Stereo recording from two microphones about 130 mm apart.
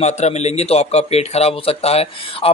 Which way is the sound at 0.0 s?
60° left (ahead or behind).